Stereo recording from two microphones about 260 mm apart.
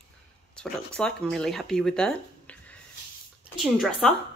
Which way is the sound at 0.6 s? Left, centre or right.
Centre.